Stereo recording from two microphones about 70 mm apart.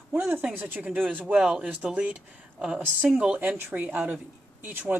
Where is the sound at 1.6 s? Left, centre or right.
Right.